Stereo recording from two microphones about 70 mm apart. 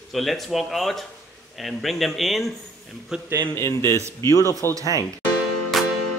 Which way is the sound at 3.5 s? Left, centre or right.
Left.